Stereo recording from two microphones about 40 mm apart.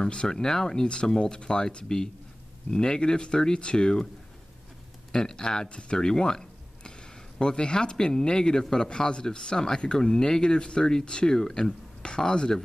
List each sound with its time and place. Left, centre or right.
0.0 s a man's voice: left
5.1 s a man's voice: centre